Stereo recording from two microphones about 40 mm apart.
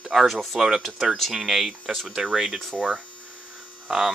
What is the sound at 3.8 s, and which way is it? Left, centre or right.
Hum, centre.